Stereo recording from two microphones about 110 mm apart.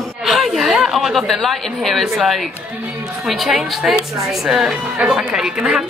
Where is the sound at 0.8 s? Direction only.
Centre (ahead or behind).